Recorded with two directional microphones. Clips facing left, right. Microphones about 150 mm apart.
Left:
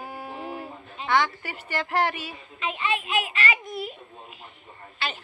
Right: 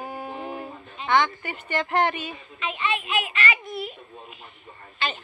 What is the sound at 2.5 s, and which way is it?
A child's voice, 35° left (ahead or behind).